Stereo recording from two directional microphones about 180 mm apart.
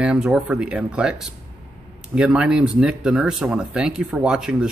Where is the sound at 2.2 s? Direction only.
5° right (ahead or behind).